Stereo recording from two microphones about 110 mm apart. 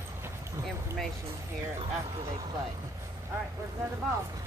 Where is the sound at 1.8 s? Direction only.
60° right (ahead or behind).